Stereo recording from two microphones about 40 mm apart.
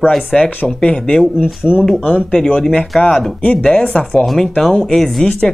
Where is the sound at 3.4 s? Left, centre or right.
Left.